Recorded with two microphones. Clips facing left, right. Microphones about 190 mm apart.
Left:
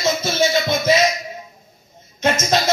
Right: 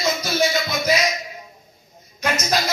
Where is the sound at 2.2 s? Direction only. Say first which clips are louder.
Left 4 dB; 25° left (ahead or behind).